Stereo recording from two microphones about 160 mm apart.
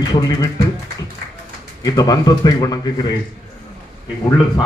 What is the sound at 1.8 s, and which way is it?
A man's voice, 25° left (ahead or behind).